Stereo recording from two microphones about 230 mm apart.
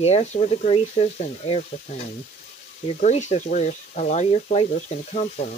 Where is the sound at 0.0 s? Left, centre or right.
Left.